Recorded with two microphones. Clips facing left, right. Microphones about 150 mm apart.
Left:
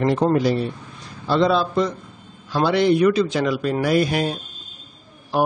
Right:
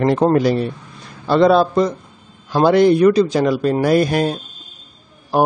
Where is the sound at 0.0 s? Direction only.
55° right (ahead or behind).